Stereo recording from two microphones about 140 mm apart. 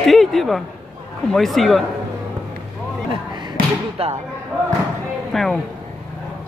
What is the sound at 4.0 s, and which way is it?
Speech, 45° right (ahead or behind).